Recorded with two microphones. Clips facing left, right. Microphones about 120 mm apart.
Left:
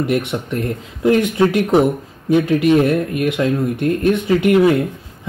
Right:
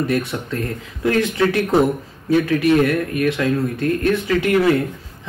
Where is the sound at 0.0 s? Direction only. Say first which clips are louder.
Left 2 dB; 20° left (ahead or behind).